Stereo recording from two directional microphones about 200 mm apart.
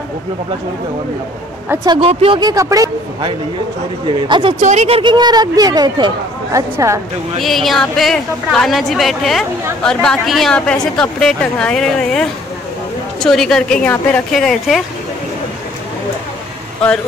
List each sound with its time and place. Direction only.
1.9 s speech: 30° right (ahead or behind)
4.6 s speech: 35° right (ahead or behind); by 7.0 s 15° right (ahead or behind)
7.3 s a woman's voice: centre (ahead or behind)